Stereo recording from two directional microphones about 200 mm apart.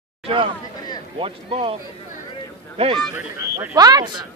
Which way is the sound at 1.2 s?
25° right (ahead or behind).